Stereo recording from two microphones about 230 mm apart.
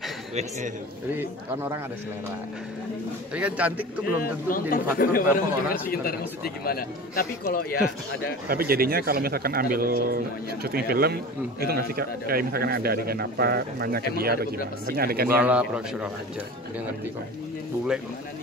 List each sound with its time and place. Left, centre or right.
0.3 s a man's voice: right
1.1 s speech: centre
3.3 s a man's voice: centre
4.2 s speech: left
8.5 s a man's voice: right
15.2 s a man's voice: centre